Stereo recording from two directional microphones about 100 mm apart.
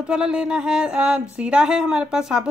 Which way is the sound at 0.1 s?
10° right (ahead or behind).